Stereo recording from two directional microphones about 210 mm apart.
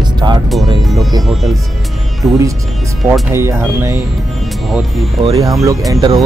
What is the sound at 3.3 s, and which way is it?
Speech, 15° right (ahead or behind).